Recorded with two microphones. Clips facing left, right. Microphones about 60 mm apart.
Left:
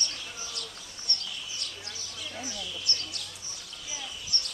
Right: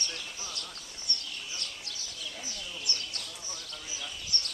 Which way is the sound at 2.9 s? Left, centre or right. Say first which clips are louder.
Left 1 dB; right.